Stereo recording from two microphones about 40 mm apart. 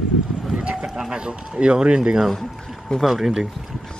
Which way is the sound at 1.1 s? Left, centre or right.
Right.